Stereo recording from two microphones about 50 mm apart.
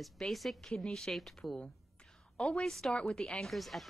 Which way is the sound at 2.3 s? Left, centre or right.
Centre.